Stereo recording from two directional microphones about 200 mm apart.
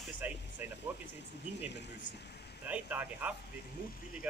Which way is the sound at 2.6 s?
10° right (ahead or behind).